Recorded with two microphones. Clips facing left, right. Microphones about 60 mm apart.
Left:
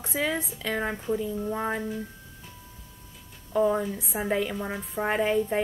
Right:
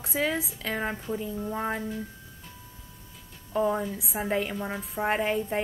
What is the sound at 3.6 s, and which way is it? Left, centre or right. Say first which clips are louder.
A woman's voice: left 2 dB; centre.